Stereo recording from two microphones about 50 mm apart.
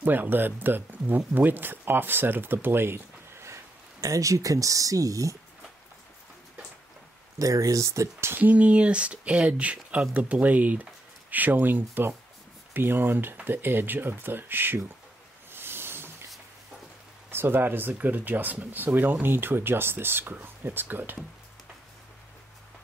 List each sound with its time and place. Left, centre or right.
0.0 s speech: right
4.2 s speech: right
7.3 s speech: right
8.4 s speech: right
15.5 s a sound: right
17.3 s speech: right